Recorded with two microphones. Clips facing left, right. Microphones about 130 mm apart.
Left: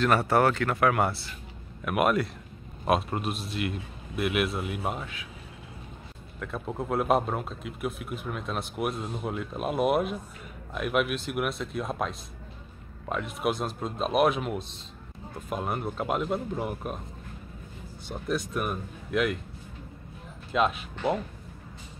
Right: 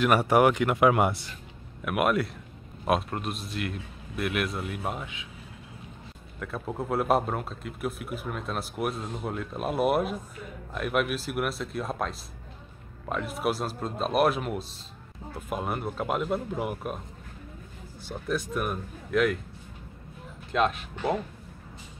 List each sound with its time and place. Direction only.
0.0 s speech: 10° right (ahead or behind)
1.9 s speech: centre (ahead or behind)
6.4 s speech: centre (ahead or behind)
18.0 s speech: centre (ahead or behind)
20.5 s speech: 5° left (ahead or behind)